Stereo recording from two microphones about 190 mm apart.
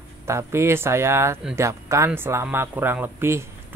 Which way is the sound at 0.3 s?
15° right (ahead or behind).